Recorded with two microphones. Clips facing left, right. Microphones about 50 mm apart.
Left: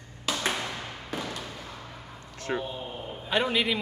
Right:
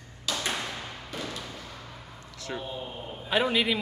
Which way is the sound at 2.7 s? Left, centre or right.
Centre.